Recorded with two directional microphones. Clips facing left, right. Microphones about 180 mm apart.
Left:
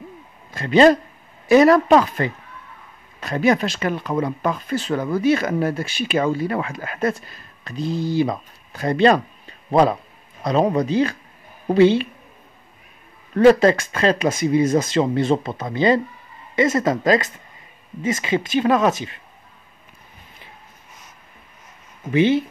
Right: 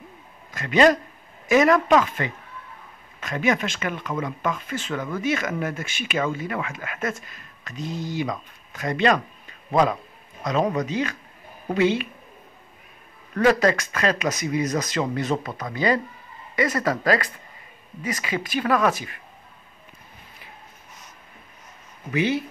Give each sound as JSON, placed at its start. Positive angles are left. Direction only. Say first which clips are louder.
{"t": 0.5, "sound": "a man's voice", "louder": "left 5 dB", "side_deg": 30}
{"t": 13.3, "sound": "speech", "louder": "left 6 dB", "side_deg": 30}
{"t": 22.1, "sound": "speech", "louder": "left 6 dB", "side_deg": 25}